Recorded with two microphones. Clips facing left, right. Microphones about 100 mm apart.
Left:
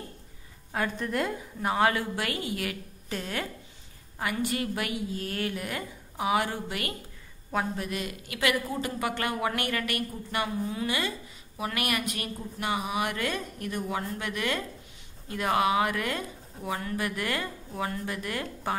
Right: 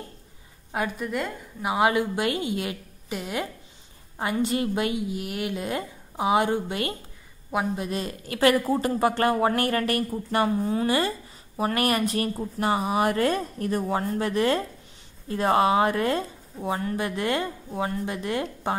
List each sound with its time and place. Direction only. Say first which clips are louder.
0.7 s a woman's voice: right 2 dB; 15° right (ahead or behind)
7.9 s a woman's voice: right 4 dB; 35° right (ahead or behind)